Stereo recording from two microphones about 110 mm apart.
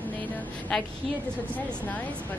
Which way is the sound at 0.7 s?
5° left (ahead or behind).